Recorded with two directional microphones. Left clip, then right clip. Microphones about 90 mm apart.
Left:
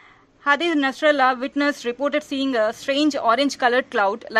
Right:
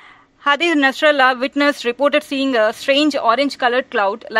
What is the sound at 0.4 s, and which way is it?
Speech, 30° right (ahead or behind).